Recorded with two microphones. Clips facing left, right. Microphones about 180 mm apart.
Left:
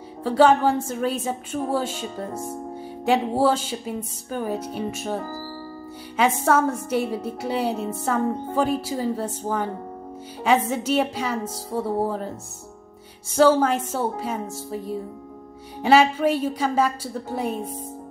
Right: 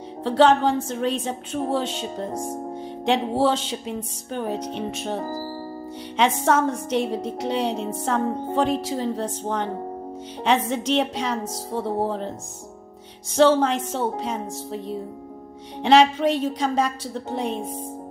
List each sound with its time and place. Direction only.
0.2 s a woman's voice: 10° left (ahead or behind)
2.3 s music: 10° right (ahead or behind)
3.1 s a woman's voice: 10° left (ahead or behind)
5.1 s music: 30° right (ahead or behind)
6.4 s a woman's voice: 10° left (ahead or behind)